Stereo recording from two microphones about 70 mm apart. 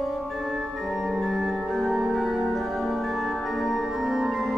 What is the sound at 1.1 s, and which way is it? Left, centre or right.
Organ, centre.